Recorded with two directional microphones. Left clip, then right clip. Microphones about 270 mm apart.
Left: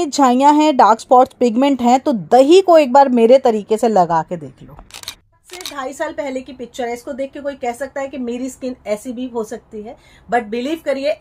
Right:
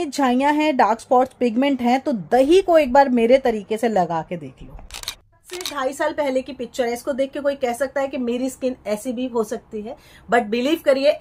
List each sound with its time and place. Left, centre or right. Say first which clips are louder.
0.0 s speech: left 7 dB; left
4.9 s a woman's voice: even; centre